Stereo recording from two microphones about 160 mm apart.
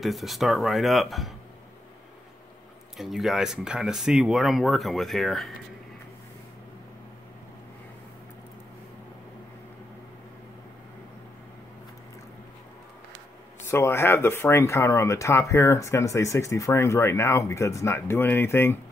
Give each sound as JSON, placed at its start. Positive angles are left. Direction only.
{"t": 0.0, "sound": "speech", "side_deg": 0}
{"t": 3.0, "sound": "speech", "side_deg": 0}
{"t": 13.7, "sound": "speech", "side_deg": 15}